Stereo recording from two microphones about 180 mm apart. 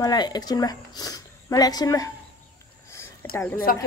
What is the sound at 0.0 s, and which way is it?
Speech, 20° left (ahead or behind).